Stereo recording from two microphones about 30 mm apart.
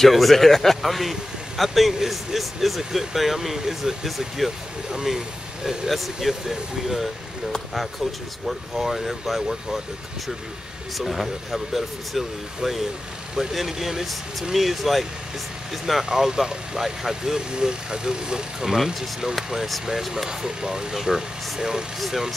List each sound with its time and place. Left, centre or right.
0.0 s speech: centre
5.9 s speech: centre
8.5 s speech: centre
11.0 s speech: centre
16.1 s speech: centre
19.9 s speech: centre
20.4 s speech: right
20.9 s speech: centre
21.5 s speech: right